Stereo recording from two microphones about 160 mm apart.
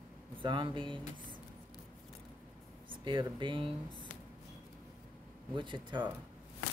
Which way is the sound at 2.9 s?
30° right (ahead or behind).